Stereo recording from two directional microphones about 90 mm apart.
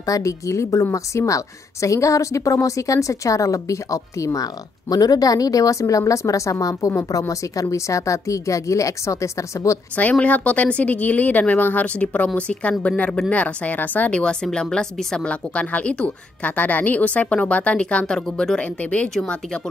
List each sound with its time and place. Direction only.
0.0 s a woman's voice: 40° left (ahead or behind)
9.9 s a woman's voice: 15° left (ahead or behind)